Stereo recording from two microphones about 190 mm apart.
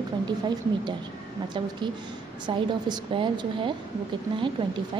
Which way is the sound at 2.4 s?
25° right (ahead or behind).